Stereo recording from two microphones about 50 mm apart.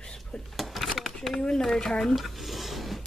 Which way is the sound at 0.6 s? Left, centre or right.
Centre.